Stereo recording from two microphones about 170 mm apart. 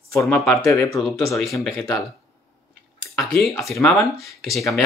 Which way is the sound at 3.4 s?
Centre (ahead or behind).